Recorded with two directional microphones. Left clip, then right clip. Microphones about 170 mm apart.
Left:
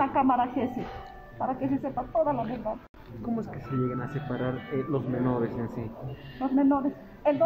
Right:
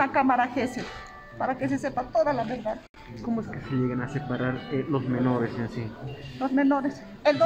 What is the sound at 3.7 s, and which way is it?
Speech, 60° right (ahead or behind).